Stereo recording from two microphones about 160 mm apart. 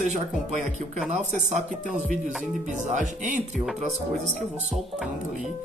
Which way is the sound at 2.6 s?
50° right (ahead or behind).